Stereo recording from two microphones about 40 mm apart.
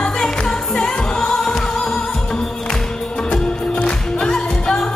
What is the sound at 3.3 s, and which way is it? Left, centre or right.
Music, centre.